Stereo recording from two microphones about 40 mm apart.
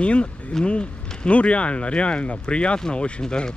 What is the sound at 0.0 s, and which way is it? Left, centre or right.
Speech, left.